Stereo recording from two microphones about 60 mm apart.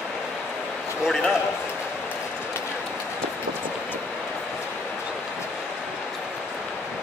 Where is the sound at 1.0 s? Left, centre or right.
Centre.